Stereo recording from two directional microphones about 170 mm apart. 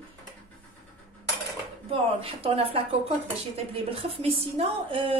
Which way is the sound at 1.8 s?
35° right (ahead or behind).